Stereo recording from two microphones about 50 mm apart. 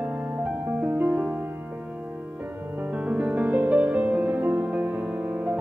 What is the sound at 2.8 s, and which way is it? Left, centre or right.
Music, right.